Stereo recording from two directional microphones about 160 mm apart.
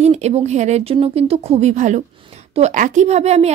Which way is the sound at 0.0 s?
45° right (ahead or behind).